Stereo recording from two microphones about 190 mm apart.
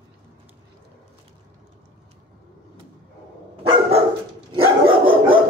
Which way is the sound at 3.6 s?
30° right (ahead or behind).